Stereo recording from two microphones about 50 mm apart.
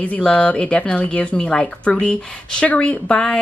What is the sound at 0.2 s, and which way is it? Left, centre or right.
Speech, left.